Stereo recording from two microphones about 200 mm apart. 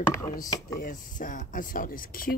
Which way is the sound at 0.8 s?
40° left (ahead or behind).